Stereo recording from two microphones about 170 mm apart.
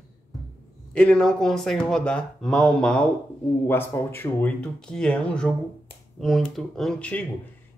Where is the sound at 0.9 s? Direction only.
5° left (ahead or behind).